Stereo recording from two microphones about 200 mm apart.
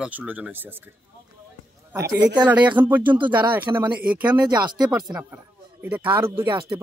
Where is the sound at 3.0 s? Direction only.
25° right (ahead or behind).